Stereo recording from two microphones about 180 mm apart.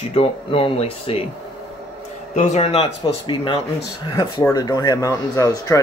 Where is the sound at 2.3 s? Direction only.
35° left (ahead or behind).